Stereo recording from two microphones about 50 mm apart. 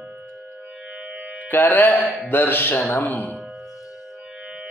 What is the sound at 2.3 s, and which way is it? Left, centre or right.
Mantra, left.